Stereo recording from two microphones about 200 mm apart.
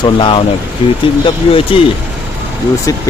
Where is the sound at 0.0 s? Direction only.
25° left (ahead or behind).